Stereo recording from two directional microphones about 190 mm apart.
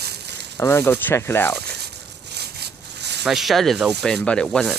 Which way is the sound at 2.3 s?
60° right (ahead or behind).